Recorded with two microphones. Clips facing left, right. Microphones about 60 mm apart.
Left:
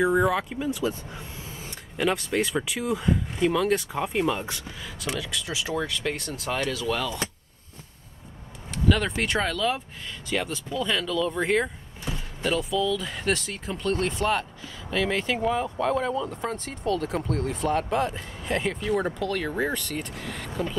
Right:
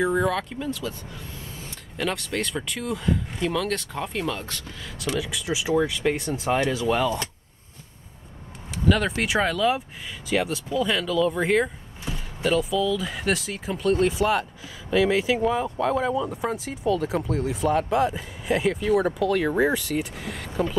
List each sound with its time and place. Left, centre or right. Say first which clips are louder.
0.0 s speech: left 1 dB; centre
2.0 s speech: left 3 dB; centre
5.1 s speech: right 4 dB; centre
8.6 s speech: right 2 dB; centre